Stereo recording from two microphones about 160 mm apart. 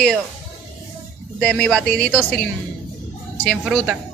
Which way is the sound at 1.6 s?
5° left (ahead or behind).